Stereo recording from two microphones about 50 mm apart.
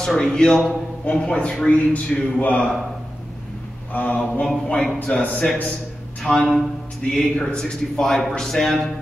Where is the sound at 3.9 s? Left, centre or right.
Left.